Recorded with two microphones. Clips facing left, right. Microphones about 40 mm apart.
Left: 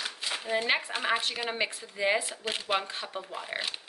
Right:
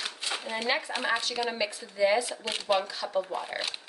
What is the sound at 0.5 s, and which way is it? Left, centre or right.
Speech, left.